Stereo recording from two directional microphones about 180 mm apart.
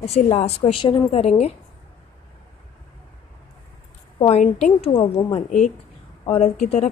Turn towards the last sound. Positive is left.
turn(degrees=40)  # may be behind; listen again after turning